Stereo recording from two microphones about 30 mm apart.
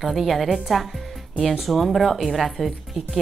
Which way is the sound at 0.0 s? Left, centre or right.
Centre.